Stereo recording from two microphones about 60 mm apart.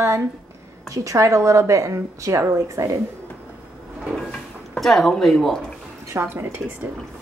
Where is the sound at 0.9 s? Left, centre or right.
Right.